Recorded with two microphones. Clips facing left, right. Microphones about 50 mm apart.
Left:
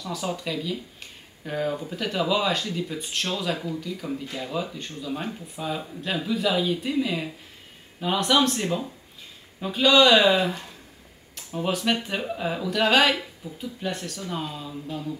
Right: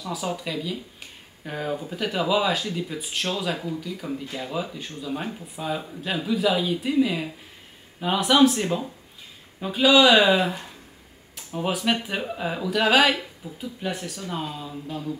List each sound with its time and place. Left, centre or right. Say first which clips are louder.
0.0 s speech: right 1 dB; centre